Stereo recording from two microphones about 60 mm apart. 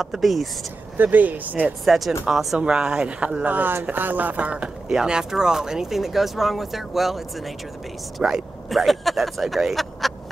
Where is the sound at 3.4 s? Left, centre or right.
Right.